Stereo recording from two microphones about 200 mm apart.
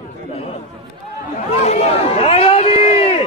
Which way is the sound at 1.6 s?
30° left (ahead or behind).